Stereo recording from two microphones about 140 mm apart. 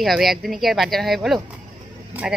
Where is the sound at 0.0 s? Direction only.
Centre (ahead or behind).